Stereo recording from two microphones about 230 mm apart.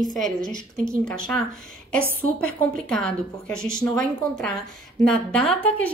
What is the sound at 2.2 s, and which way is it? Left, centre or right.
A woman's voice, centre.